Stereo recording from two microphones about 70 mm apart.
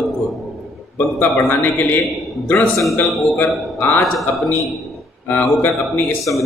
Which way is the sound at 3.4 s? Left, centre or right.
Left.